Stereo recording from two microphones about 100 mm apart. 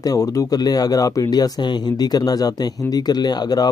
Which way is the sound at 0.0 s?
35° left (ahead or behind).